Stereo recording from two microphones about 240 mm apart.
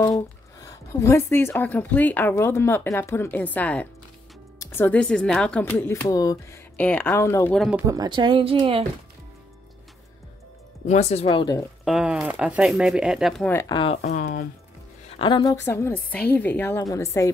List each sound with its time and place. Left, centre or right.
0.6 s a woman's voice: centre
7.8 s speech: centre
10.9 s speech: left
11.8 s speech: centre
14.0 s speech: left
15.1 s a woman's voice: centre